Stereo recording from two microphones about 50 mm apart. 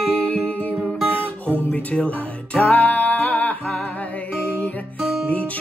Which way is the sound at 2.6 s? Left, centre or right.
Left.